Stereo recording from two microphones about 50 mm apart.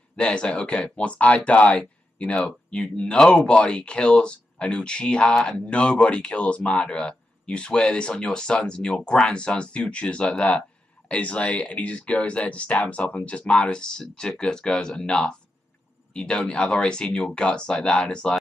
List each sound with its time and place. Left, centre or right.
0.1 s speech: left